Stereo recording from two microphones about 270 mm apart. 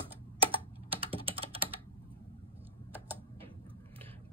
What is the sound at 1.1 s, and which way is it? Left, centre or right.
Typing, centre.